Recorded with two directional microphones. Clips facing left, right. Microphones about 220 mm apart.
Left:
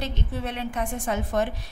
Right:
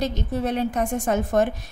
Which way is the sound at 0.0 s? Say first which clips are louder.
Right 6 dB; 40° right (ahead or behind).